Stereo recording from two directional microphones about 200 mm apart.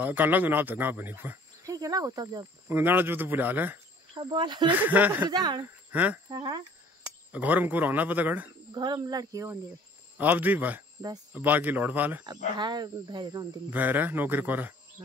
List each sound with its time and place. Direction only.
0.0 s speech: 10° right (ahead or behind)
4.1 s speech: 25° right (ahead or behind)
4.7 s speech: 10° right (ahead or behind)
5.3 s speech: 20° right (ahead or behind)
5.9 s speech: 10° right (ahead or behind)
6.3 s speech: 20° right (ahead or behind)
7.3 s speech: 10° right (ahead or behind)
8.7 s speech: 20° right (ahead or behind)
12.5 s speech: 20° right (ahead or behind)
13.7 s speech: 10° right (ahead or behind)